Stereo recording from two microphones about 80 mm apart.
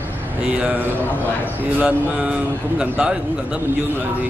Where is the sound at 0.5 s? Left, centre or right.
Centre.